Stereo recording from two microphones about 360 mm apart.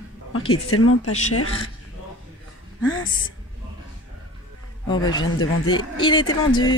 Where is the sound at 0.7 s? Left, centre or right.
Left.